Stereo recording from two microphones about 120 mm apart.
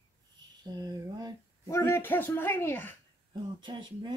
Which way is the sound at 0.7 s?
35° right (ahead or behind).